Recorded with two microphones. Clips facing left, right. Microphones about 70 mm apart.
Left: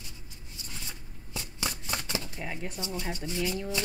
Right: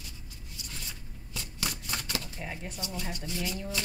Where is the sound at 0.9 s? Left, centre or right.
Left.